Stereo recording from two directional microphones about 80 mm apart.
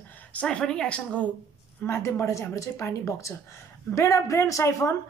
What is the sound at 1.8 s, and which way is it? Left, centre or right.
A woman's voice, left.